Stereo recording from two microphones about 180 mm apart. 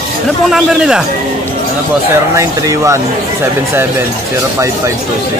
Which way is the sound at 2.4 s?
15° right (ahead or behind).